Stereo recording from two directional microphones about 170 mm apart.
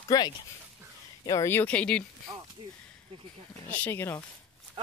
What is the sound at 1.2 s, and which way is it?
Speech, 20° left (ahead or behind).